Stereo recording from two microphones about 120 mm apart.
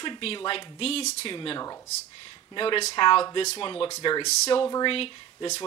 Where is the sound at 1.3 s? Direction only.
40° left (ahead or behind).